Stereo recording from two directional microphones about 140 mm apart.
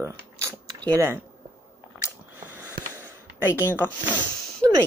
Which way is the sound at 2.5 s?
15° right (ahead or behind).